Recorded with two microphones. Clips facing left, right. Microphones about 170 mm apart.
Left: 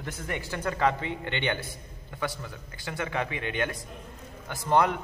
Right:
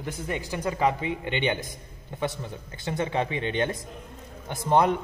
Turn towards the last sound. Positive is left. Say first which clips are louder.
# right 2 dB
turn(degrees=-20)  # may be behind; listen again after turning